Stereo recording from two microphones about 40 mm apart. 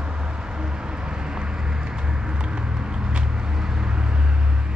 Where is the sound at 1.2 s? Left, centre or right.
Centre.